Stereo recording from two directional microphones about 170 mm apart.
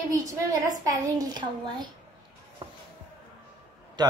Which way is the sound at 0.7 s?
20° right (ahead or behind).